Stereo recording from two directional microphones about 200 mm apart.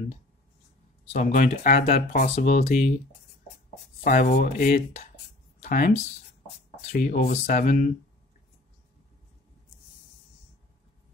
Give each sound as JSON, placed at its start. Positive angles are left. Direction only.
{"t": 1.1, "sound": "speech", "side_deg": 40}
{"t": 2.2, "sound": "speech", "side_deg": 35}
{"t": 4.0, "sound": "speech", "side_deg": 45}